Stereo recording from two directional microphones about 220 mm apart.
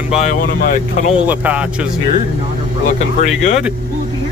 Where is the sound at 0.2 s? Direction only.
30° left (ahead or behind).